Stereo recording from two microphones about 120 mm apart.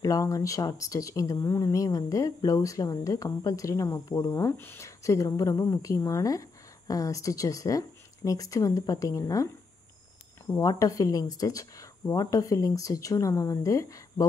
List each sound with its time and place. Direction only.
0.0 s a woman's voice: 30° left (ahead or behind)